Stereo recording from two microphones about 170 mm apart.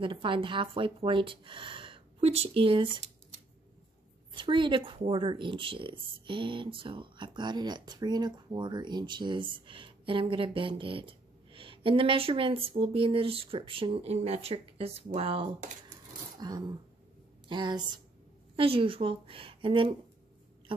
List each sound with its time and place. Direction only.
0.0 s speech: 30° right (ahead or behind)
4.4 s speech: 30° right (ahead or behind)
16.3 s a sound: 25° right (ahead or behind)
17.5 s a woman's voice: 25° right (ahead or behind)